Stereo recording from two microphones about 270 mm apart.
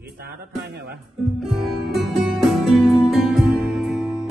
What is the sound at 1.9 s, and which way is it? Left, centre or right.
Music, centre.